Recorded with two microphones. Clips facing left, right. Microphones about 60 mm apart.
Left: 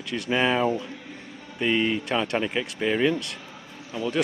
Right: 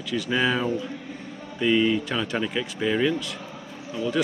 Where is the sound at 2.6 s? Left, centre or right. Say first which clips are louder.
Even; centre.